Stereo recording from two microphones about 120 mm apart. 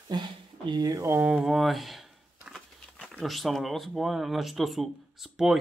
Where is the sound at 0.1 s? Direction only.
35° right (ahead or behind).